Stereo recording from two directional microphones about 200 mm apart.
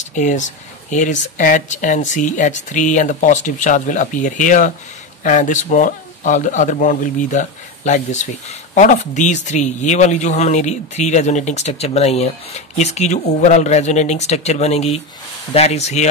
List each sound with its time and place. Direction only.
0.0 s speech: 40° left (ahead or behind)